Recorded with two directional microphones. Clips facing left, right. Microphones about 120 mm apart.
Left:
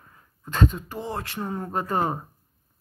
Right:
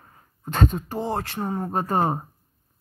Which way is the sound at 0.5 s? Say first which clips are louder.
Right 1 dB; 35° right (ahead or behind).